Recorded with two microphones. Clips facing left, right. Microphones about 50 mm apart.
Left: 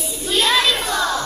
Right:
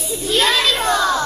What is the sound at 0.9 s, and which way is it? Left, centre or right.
Music, centre.